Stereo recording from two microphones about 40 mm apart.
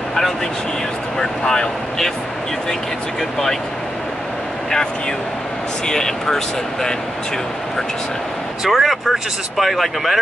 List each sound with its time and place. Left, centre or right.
1.4 s speech: centre
3.2 s speech: centre
5.9 s speech: centre
8.6 s speech: centre